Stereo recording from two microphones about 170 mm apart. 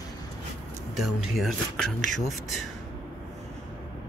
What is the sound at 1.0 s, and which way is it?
Speech, centre (ahead or behind).